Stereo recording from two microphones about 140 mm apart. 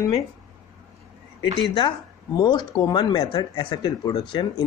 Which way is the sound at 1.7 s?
30° left (ahead or behind).